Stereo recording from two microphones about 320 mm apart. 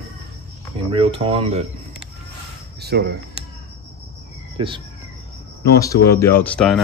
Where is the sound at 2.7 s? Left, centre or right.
Right.